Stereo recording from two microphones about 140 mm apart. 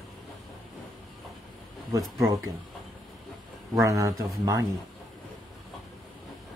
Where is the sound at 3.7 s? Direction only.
20° right (ahead or behind).